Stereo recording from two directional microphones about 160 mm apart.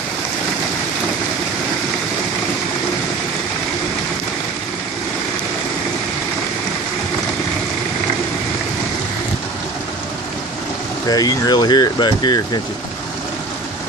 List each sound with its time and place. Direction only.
11.1 s speech: 25° left (ahead or behind)